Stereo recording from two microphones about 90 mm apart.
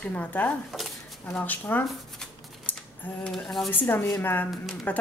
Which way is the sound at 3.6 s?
20° left (ahead or behind).